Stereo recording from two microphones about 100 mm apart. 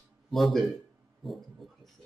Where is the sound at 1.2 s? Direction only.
Centre (ahead or behind).